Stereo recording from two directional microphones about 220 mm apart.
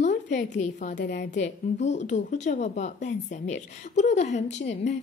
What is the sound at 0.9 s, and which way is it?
Speech, 50° left (ahead or behind).